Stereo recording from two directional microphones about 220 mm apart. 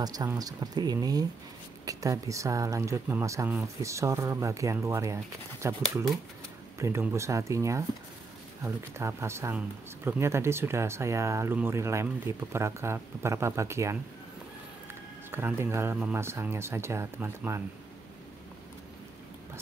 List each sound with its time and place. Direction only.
0.0 s speech: 15° right (ahead or behind)
15.3 s speech: 10° right (ahead or behind)